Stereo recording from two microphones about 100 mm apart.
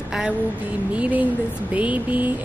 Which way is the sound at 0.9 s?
15° right (ahead or behind).